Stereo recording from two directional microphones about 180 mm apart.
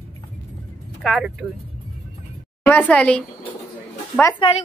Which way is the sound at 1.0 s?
Centre (ahead or behind).